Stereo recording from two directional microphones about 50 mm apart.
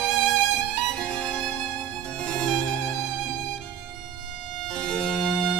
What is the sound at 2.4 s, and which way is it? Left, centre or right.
Music, centre.